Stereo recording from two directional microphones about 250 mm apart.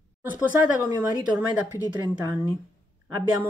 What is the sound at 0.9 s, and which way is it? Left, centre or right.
Speech, centre.